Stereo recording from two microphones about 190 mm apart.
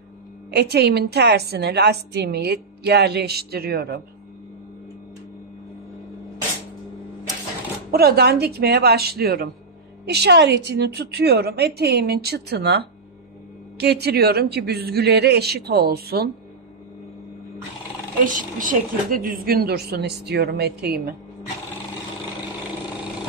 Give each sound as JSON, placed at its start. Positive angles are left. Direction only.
{"t": 0.5, "sound": "a woman's voice", "side_deg": -60}
{"t": 7.9, "sound": "a woman's voice", "side_deg": -55}
{"t": 18.6, "sound": "a woman's voice", "side_deg": -45}